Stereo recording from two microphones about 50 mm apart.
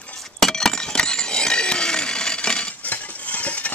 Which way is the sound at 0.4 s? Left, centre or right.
Centre.